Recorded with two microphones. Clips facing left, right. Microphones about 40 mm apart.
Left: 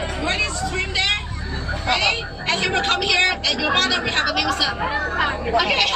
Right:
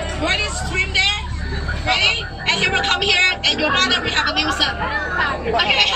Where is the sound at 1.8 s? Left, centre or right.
Right.